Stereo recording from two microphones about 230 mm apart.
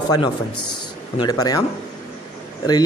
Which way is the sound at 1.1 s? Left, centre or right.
Centre.